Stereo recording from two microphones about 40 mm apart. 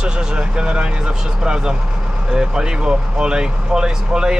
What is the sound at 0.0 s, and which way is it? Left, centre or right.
Speech, right.